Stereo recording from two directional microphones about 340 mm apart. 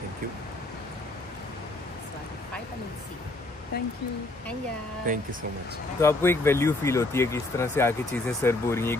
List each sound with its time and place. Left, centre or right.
5.1 s speech: right
5.9 s speech: centre